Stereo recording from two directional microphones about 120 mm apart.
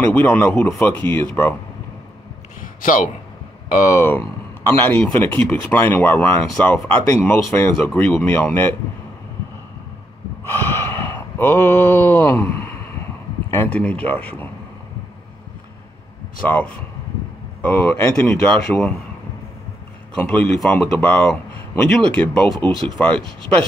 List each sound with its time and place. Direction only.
0.1 s a man's voice: 15° left (ahead or behind)
2.6 s a sound: 90° left
3.9 s a man's voice: 20° left (ahead or behind)
7.8 s a man's voice: 10° left (ahead or behind)
10.4 s gasp: 20° left (ahead or behind)
13.5 s a man's voice: 15° left (ahead or behind)
16.4 s a man's voice: 15° left (ahead or behind)
18.7 s a man's voice: 10° left (ahead or behind)
20.2 s a man's voice: 15° left (ahead or behind)